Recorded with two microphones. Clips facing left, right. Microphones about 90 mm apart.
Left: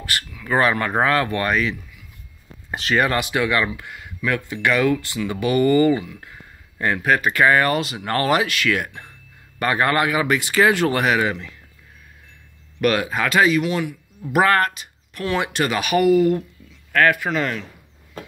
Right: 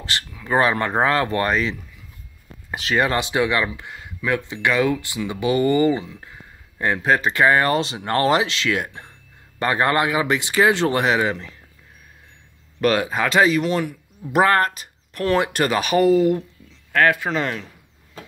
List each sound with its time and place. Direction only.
0.0 s speech: 25° right (ahead or behind)
2.7 s speech: 20° right (ahead or behind)
12.8 s speech: 30° right (ahead or behind)